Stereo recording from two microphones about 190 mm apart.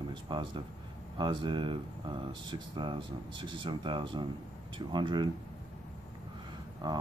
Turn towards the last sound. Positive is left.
turn(degrees=-20)  # may be behind; listen again after turning